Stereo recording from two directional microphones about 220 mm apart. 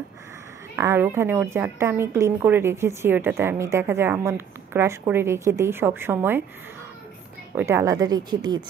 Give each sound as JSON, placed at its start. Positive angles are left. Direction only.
{"t": 0.7, "sound": "a woman's voice", "side_deg": -10}
{"t": 7.5, "sound": "a woman's voice", "side_deg": -10}